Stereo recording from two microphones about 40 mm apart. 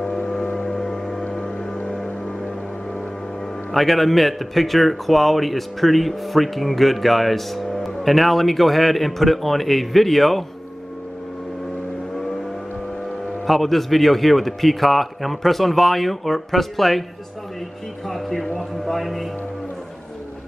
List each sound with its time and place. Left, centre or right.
0.5 s music: left
0.7 s music: centre
1.2 s vehicle: left
2.0 s music: left
3.7 s speech: centre
13.5 s speech: centre
18.0 s speech: centre